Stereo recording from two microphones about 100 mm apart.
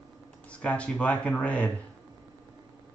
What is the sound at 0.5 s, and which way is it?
Speech, 10° left (ahead or behind).